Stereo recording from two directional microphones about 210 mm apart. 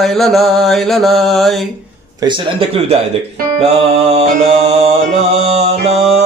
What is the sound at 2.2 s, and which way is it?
Mantra, 25° right (ahead or behind).